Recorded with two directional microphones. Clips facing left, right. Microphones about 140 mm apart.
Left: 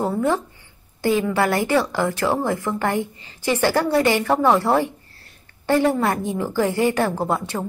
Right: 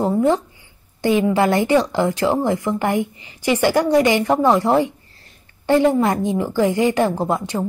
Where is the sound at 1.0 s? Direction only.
20° right (ahead or behind).